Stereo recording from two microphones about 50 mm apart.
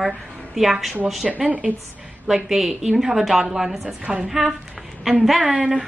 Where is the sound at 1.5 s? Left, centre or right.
Right.